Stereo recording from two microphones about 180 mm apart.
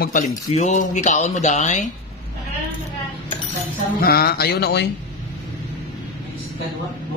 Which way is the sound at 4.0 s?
60° left (ahead or behind).